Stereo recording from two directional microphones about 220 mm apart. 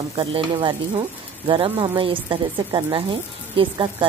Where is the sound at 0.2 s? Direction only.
25° right (ahead or behind).